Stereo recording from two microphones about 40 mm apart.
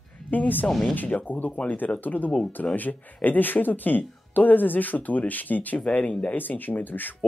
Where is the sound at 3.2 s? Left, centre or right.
Left.